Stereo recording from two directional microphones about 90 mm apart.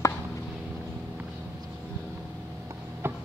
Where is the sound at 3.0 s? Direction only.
25° right (ahead or behind).